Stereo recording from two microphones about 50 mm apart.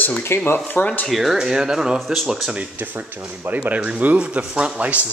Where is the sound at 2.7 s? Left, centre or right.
Right.